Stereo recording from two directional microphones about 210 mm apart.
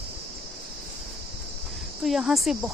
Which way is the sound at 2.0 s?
Centre (ahead or behind).